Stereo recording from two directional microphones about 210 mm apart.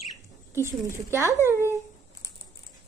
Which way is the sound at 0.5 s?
10° right (ahead or behind).